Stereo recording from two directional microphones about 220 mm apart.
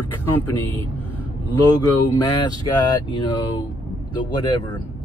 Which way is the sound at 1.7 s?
15° left (ahead or behind).